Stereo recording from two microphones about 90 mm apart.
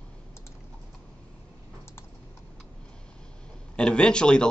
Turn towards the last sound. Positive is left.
turn(degrees=10)  # may be behind; listen again after turning